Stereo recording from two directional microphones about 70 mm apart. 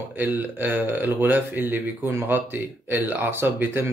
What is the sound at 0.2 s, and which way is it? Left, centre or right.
A man's voice, right.